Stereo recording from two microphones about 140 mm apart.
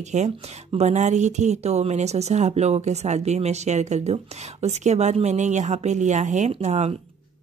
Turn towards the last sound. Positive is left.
turn(degrees=-55)  # may be behind; listen again after turning